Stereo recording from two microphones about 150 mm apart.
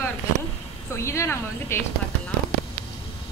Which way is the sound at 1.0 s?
20° left (ahead or behind).